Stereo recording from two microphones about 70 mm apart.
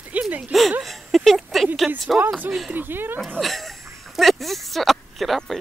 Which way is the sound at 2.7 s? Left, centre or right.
Right.